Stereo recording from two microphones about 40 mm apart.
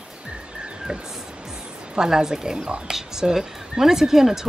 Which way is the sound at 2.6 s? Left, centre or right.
Right.